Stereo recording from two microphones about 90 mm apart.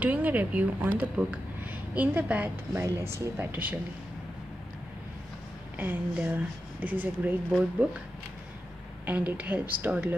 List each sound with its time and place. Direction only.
0.0 s a woman's voice: 20° right (ahead or behind)
2.7 s speech: 30° right (ahead or behind)
3.3 s speech: 20° right (ahead or behind)
5.8 s speech: 15° right (ahead or behind)
9.0 s speech: 20° right (ahead or behind)